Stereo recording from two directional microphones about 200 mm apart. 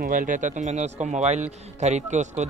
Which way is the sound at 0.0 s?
40° right (ahead or behind).